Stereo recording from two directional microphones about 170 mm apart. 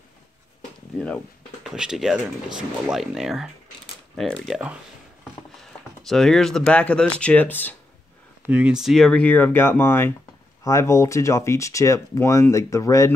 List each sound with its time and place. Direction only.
1.0 s speech: centre (ahead or behind)
6.0 s speech: centre (ahead or behind)
8.5 s speech: 5° right (ahead or behind); by 13.1 s 20° left (ahead or behind)